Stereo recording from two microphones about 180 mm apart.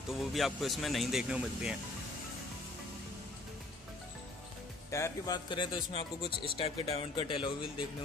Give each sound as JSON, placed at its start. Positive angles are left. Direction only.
{"t": 0.1, "sound": "speech", "side_deg": 0}
{"t": 4.9, "sound": "speech", "side_deg": 20}